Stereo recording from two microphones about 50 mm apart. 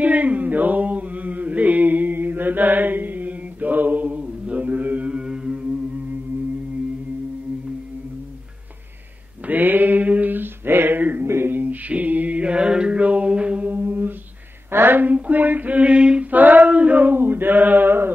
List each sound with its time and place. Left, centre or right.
0.0 s mantra: right
5.1 s music: centre
9.5 s male singing: right
11.2 s a sound: right
13.7 s mantra: right
14.7 s a sound: right
16.3 s male singing: right